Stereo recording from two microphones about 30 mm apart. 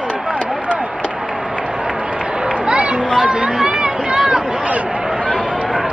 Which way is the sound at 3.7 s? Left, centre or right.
Right.